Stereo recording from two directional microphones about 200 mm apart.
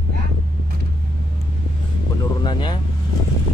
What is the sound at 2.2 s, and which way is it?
Speech, 20° left (ahead or behind).